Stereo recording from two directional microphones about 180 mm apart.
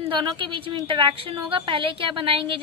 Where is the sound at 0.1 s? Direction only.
30° right (ahead or behind).